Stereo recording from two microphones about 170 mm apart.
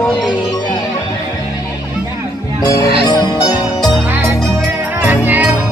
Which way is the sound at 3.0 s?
25° left (ahead or behind).